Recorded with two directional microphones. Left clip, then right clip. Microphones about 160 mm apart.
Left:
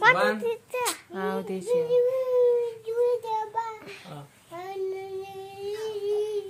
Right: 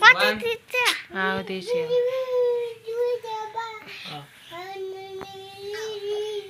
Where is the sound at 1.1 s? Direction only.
Centre (ahead or behind).